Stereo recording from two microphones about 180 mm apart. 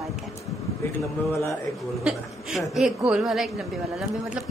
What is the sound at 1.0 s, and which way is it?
Speech, 15° left (ahead or behind).